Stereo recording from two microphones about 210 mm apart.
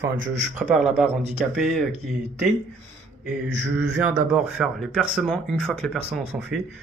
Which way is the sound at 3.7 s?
5° right (ahead or behind).